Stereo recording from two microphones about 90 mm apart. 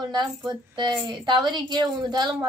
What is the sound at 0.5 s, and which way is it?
A woman's voice, 60° right (ahead or behind).